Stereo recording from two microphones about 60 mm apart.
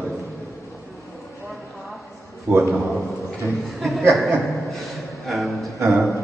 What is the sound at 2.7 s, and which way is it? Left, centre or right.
A man's voice, centre.